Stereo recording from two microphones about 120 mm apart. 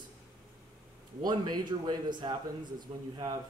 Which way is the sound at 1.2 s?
35° right (ahead or behind).